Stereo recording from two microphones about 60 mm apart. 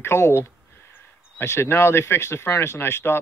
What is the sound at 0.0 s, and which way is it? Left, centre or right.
Speech, left.